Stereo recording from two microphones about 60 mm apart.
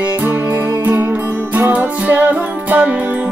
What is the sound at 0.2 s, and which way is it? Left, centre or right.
Music, right.